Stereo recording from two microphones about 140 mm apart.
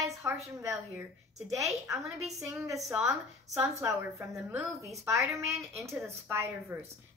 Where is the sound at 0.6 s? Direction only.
20° right (ahead or behind).